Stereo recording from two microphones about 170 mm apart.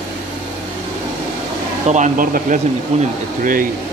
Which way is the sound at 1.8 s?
45° right (ahead or behind).